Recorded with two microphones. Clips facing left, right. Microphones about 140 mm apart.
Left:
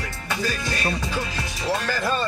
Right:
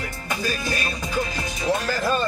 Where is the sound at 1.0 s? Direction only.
15° right (ahead or behind).